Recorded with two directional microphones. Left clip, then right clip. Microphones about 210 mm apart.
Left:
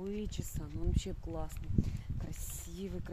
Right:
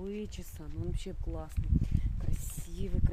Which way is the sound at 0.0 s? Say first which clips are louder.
Right 1 dB; 10° left (ahead or behind).